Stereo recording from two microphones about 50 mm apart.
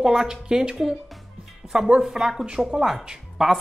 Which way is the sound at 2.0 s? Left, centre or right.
Centre.